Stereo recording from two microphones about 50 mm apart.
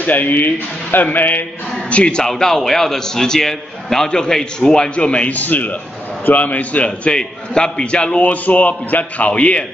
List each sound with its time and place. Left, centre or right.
0.0 s speech: left
1.9 s a man's voice: left
2.2 s a man's voice: centre; by 9.7 s left